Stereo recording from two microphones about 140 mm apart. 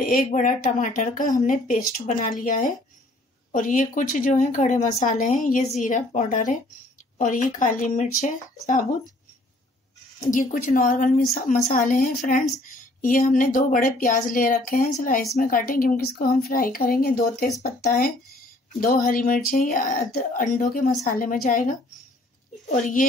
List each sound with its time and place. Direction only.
0.0 s speech: 80° left; by 8.8 s 65° left (ahead or behind)
10.3 s speech: 75° left (ahead or behind)
11.3 s speech: 65° left (ahead or behind); by 18.1 s 90° left
18.8 s speech: 80° left
22.7 s speech: 60° left (ahead or behind)